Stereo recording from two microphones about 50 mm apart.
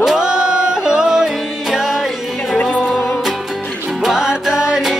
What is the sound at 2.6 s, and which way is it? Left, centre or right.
Music, left.